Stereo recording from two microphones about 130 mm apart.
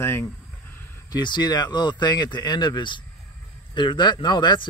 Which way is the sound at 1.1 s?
35° left (ahead or behind).